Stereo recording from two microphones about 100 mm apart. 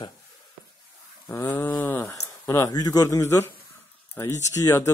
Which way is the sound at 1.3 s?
20° left (ahead or behind).